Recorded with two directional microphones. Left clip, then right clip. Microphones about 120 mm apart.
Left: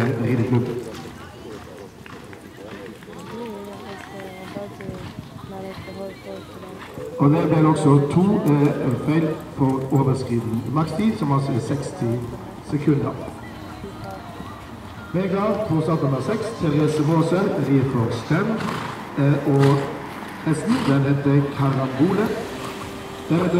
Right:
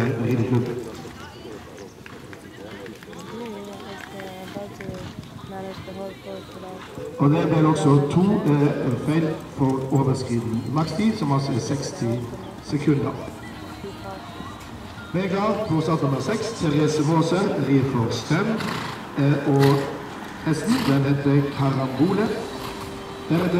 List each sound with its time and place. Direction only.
0.2 s a sound: 5° left (ahead or behind)
7.2 s a man's voice: 10° right (ahead or behind)
8.2 s music: 25° right (ahead or behind)
8.5 s a man's voice: 15° right (ahead or behind)
10.7 s a man's voice: 30° right (ahead or behind)
15.1 s a man's voice: 40° right (ahead or behind)
18.6 s roaring cats: 25° right (ahead or behind)
19.5 s music: 25° right (ahead or behind)
20.4 s a man's voice: 30° right (ahead or behind)
23.3 s music: 30° right (ahead or behind)